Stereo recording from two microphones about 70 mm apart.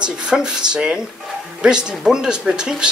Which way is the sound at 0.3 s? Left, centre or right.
Centre.